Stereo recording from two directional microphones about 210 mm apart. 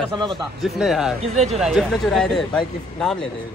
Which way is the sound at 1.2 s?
30° right (ahead or behind).